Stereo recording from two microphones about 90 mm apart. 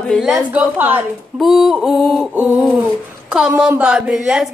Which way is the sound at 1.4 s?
5° right (ahead or behind).